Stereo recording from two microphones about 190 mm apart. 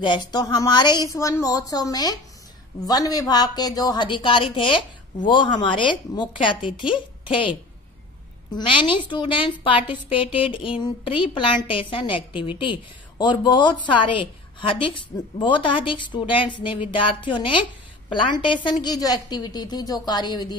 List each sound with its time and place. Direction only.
0.0 s speech: 25° left (ahead or behind)